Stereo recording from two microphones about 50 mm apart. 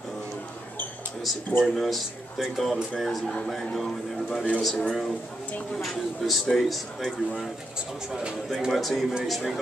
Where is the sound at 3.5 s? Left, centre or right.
Centre.